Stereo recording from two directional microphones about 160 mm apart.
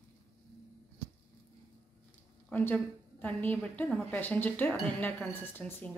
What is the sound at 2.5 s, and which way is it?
A woman's voice, 10° left (ahead or behind).